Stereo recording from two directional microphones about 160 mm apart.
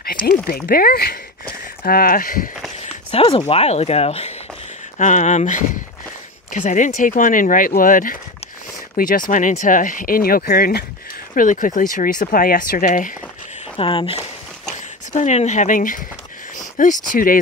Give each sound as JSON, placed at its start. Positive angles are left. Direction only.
{"t": 0.0, "sound": "a sound", "side_deg": 65}
{"t": 0.7, "sound": "speech", "side_deg": 70}
{"t": 2.8, "sound": "speech", "side_deg": 35}
{"t": 11.3, "sound": "speech", "side_deg": 55}
{"t": 13.7, "sound": "speech", "side_deg": 35}
{"t": 14.7, "sound": "speech", "side_deg": 50}